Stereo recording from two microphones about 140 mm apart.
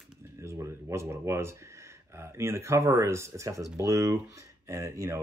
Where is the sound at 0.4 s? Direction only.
20° right (ahead or behind).